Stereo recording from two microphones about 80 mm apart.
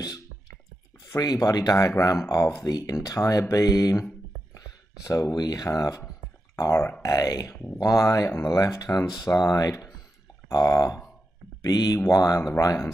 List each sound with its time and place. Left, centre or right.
1.1 s speech: left
2.7 s speech: left
7.0 s speech: left
8.5 s speech: left